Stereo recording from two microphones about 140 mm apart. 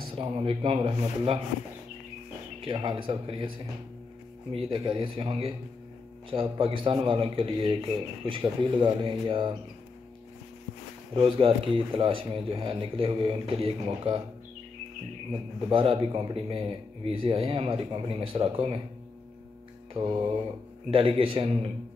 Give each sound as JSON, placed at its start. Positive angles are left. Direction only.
{"t": 0.1, "sound": "a man's voice", "side_deg": -40}
{"t": 2.6, "sound": "a man's voice", "side_deg": -35}
{"t": 11.1, "sound": "a man's voice", "side_deg": -40}
{"t": 15.7, "sound": "a man's voice", "side_deg": -40}
{"t": 19.9, "sound": "a man's voice", "side_deg": -35}